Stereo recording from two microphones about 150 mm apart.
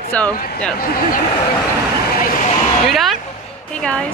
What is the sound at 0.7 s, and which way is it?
Speech, 70° left (ahead or behind).